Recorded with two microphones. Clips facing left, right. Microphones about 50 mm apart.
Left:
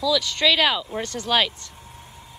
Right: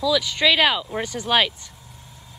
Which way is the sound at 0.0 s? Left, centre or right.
Centre.